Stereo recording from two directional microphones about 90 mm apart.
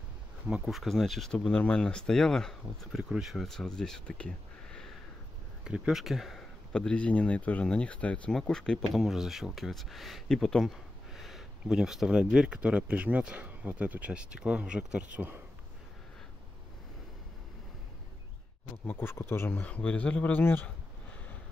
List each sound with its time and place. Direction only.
0.5 s speech: 15° right (ahead or behind)
0.7 s speech: centre (ahead or behind)
3.0 s speech: 5° right (ahead or behind)
5.6 s speech: 10° right (ahead or behind)
6.7 s speech: 10° left (ahead or behind)
9.0 s speech: 5° right (ahead or behind); by 15.4 s 20° right (ahead or behind)
18.9 s speech: 25° left (ahead or behind)
19.6 s speech: 15° left (ahead or behind)